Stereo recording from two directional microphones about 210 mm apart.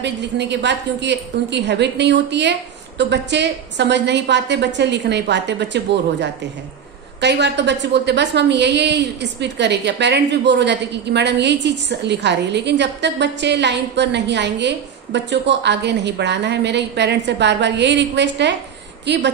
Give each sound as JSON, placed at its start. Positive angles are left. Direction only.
{"t": 0.0, "sound": "a woman's voice", "side_deg": -55}
{"t": 7.2, "sound": "a woman's voice", "side_deg": -55}